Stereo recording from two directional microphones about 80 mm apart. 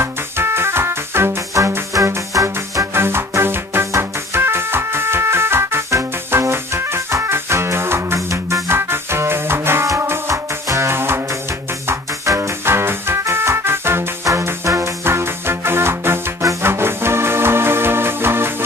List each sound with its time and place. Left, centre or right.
0.0 s music: right